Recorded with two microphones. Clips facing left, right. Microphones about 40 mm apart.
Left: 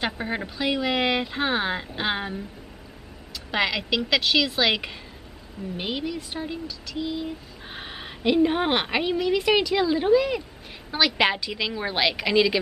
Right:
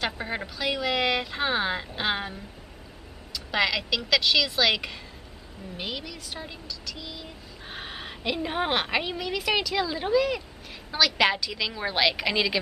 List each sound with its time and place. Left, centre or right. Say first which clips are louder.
0.0 s speech: left 2 dB; centre